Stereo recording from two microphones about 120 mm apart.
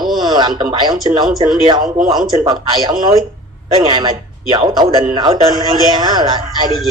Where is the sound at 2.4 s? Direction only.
35° right (ahead or behind).